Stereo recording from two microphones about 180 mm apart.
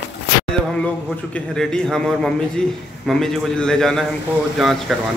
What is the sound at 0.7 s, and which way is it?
Speech, 5° left (ahead or behind).